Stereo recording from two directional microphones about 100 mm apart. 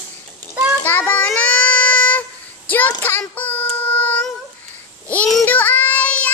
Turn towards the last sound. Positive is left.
turn(degrees=15)  # may be behind; listen again after turning